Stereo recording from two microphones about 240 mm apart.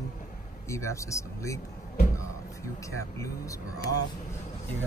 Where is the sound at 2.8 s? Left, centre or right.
Centre.